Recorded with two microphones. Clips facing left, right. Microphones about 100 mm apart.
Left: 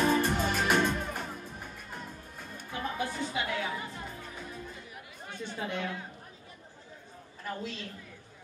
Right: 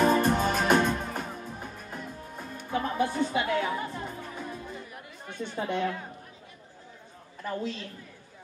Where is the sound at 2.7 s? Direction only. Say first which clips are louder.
Right 7 dB; 40° right (ahead or behind).